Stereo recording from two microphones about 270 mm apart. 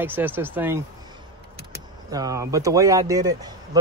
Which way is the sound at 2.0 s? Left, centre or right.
Centre.